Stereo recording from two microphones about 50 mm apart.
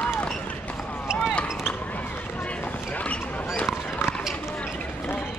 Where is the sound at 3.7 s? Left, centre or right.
Centre.